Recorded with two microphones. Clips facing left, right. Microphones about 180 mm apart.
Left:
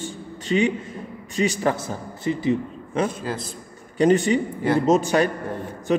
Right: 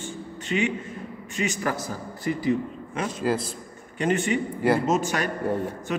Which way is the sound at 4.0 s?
35° left (ahead or behind).